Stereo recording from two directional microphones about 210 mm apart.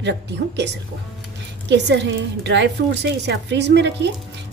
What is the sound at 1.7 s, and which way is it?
A woman's voice, 55° right (ahead or behind).